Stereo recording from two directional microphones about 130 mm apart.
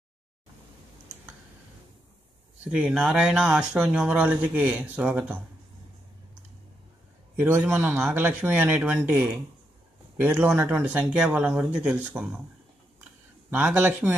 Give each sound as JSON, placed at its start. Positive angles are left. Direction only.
{"t": 2.7, "sound": "speech", "side_deg": -5}
{"t": 7.3, "sound": "a man's voice", "side_deg": -20}
{"t": 13.5, "sound": "speech", "side_deg": -15}